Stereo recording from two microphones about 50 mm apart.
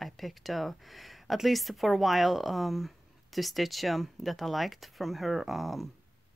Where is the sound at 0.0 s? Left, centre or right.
Centre.